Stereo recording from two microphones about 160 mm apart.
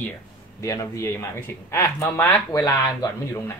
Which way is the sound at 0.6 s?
20° left (ahead or behind).